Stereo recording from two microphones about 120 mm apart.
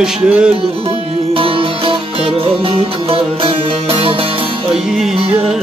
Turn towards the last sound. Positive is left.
turn(degrees=-50)  # may be behind; listen again after turning